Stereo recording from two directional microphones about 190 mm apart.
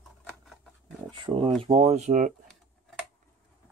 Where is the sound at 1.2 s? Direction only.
30° right (ahead or behind).